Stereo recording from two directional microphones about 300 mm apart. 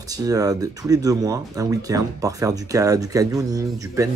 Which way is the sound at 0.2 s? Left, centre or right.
Centre.